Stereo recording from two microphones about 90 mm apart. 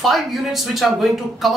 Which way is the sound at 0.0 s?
Centre (ahead or behind).